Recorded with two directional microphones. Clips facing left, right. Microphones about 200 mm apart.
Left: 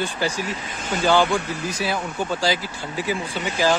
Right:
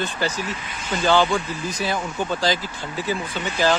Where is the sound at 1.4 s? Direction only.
70° left (ahead or behind).